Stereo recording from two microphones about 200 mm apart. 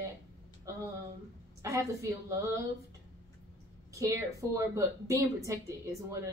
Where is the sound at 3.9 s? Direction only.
15° right (ahead or behind).